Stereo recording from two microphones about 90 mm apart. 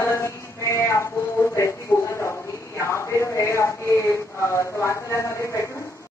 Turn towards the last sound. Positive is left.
turn(degrees=35)  # may be behind; listen again after turning